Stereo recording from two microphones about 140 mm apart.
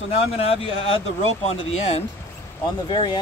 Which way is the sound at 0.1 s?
45° left (ahead or behind).